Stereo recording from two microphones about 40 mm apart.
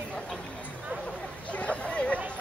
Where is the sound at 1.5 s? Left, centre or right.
Left.